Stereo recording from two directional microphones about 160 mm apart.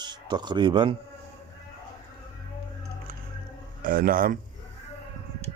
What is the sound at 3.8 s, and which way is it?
Speech, 65° right (ahead or behind).